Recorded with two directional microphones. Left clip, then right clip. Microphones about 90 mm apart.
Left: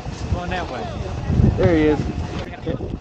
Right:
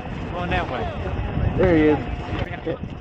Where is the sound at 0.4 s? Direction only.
10° left (ahead or behind).